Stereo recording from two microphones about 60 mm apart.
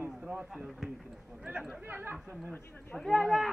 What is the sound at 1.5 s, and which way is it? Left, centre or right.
Speech, right.